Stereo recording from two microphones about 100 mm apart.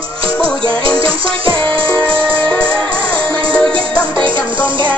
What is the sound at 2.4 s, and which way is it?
Music, 10° left (ahead or behind).